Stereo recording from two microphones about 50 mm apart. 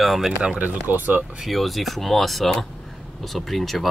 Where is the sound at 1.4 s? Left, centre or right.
Centre.